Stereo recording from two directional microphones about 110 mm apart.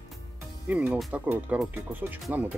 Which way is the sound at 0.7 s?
15° right (ahead or behind).